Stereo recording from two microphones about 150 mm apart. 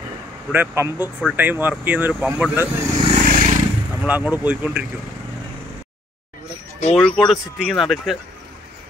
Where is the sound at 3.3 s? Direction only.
60° right (ahead or behind).